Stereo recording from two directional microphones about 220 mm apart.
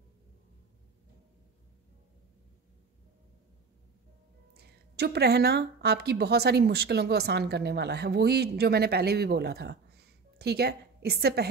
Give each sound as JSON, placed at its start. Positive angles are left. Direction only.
{"t": 4.6, "sound": "speech", "side_deg": -50}